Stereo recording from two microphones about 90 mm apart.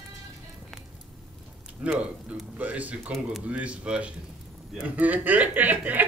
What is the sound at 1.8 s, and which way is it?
Speech, 15° right (ahead or behind).